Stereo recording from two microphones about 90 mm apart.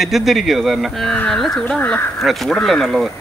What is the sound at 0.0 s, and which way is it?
Speech, centre (ahead or behind).